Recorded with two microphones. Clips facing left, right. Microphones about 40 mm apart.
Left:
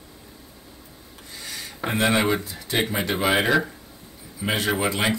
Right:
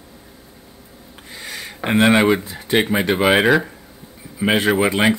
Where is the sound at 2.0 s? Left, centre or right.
Centre.